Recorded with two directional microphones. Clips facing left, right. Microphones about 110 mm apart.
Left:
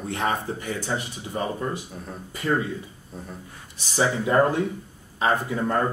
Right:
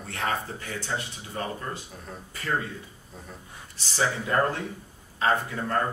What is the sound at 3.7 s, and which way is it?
A man's voice, 20° left (ahead or behind).